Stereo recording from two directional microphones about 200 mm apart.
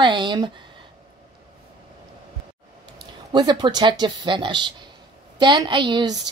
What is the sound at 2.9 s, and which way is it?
A woman's voice, 20° right (ahead or behind).